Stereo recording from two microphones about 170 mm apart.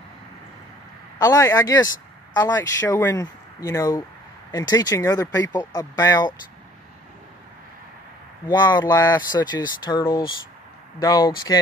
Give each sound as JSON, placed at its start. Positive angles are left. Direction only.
{"t": 1.2, "sound": "speech", "side_deg": 20}
{"t": 8.5, "sound": "speech", "side_deg": 25}